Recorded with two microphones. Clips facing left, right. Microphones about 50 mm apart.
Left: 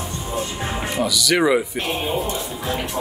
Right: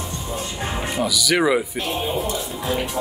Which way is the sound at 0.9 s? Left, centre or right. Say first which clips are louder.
Left 1 dB; centre.